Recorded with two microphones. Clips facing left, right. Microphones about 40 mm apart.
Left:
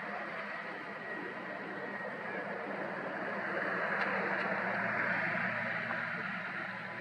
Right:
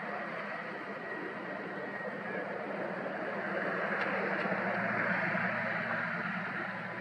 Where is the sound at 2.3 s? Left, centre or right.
Centre.